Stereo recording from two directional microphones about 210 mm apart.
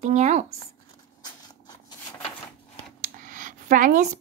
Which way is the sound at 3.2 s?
40° right (ahead or behind).